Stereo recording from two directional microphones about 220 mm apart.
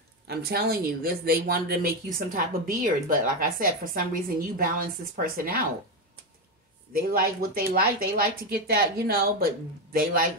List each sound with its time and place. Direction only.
0.3 s a woman's voice: 45° right (ahead or behind)
6.9 s a woman's voice: 40° right (ahead or behind)